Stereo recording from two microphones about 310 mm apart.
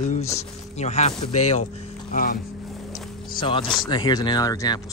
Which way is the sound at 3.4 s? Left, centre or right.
Centre.